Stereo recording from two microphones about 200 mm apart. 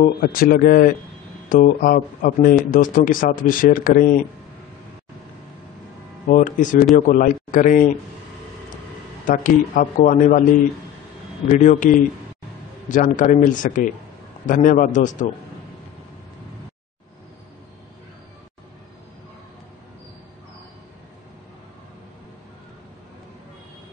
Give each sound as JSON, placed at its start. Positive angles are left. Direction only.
{"t": 0.0, "sound": "speech", "side_deg": 45}
{"t": 6.2, "sound": "speech", "side_deg": 40}
{"t": 9.2, "sound": "speech", "side_deg": 40}
{"t": 11.4, "sound": "speech", "side_deg": 40}